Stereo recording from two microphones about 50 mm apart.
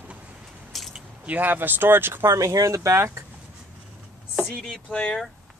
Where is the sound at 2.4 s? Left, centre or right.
Right.